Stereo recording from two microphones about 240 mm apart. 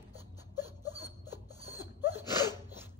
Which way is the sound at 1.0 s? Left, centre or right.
Centre.